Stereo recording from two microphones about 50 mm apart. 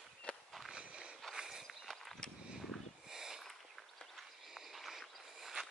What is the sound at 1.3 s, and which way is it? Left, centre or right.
Walk, centre.